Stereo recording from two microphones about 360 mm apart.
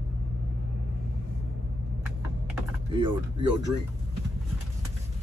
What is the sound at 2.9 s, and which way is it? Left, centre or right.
Speech, centre.